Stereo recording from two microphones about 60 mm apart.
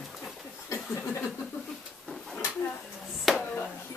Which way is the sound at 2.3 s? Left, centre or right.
Left.